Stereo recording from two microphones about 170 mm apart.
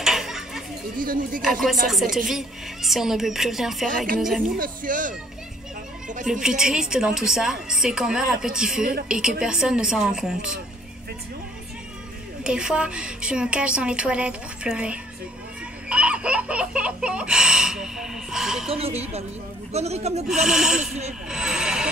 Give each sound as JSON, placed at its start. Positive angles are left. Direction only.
{"t": 0.0, "sound": "chatter", "side_deg": 0}
{"t": 0.9, "sound": "speech", "side_deg": -55}
{"t": 1.9, "sound": "a woman's voice", "side_deg": 0}
{"t": 4.6, "sound": "speech", "side_deg": -50}
{"t": 6.4, "sound": "a woman's voice", "side_deg": -5}
{"t": 12.4, "sound": "a woman's voice", "side_deg": -5}
{"t": 15.9, "sound": "a sound", "side_deg": -5}
{"t": 18.7, "sound": "speech", "side_deg": -35}
{"t": 20.2, "sound": "a woman's voice", "side_deg": 0}
{"t": 21.3, "sound": "vehicle", "side_deg": -5}